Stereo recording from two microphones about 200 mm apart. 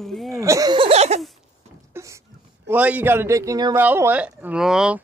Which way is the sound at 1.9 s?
15° right (ahead or behind).